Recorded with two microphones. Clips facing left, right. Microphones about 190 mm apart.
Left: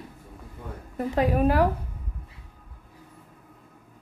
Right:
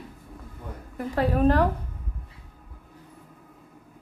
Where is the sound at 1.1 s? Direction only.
15° left (ahead or behind).